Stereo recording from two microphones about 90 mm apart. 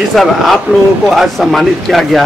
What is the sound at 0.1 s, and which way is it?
Speech, centre (ahead or behind).